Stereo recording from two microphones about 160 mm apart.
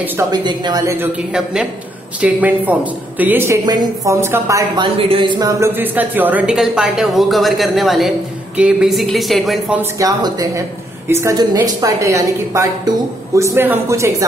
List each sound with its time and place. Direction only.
0.3 s a woman's voice: 25° right (ahead or behind)
0.9 s a woman's voice: 5° right (ahead or behind)
3.6 s a woman's voice: 25° right (ahead or behind)
4.8 s a woman's voice: 35° right (ahead or behind); by 9.8 s centre (ahead or behind)
9.8 s a woman's voice: 20° right (ahead or behind)